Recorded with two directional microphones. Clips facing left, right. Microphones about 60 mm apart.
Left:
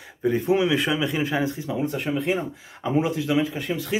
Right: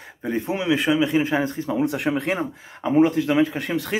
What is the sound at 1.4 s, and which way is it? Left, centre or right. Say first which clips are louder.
Speech: right 3 dB; right.